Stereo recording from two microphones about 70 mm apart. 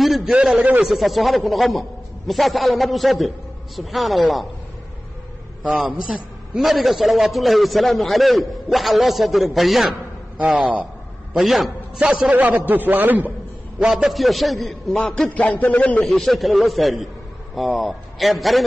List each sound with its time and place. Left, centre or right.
0.0 s a sound: centre
0.3 s a man's voice: centre
0.8 s a man's voice: centre
5.6 s a man's voice: centre
11.3 s a man's voice: centre
12.4 s a man's voice: right
13.8 s a man's voice: centre
15.0 s a man's voice: centre
16.0 s a man's voice: centre